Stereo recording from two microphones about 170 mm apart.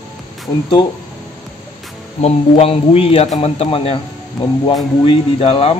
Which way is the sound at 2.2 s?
35° left (ahead or behind).